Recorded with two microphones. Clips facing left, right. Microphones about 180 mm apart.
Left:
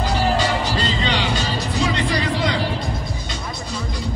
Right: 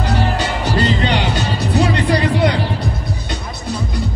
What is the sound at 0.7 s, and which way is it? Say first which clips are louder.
Music: right 5 dB; 60° right (ahead or behind).